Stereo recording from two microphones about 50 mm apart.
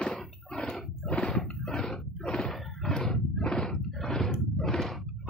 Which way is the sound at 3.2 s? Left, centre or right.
Centre.